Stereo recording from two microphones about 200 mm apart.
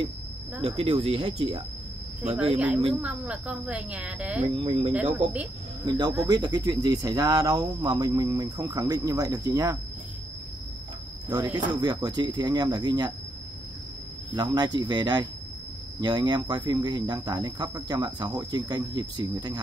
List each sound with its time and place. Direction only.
0.6 s speech: 30° right (ahead or behind)
3.0 s a woman's voice: 5° right (ahead or behind)
4.6 s speech: 25° right (ahead or behind)
11.2 s speech: 20° right (ahead or behind)
14.3 s speech: 20° right (ahead or behind)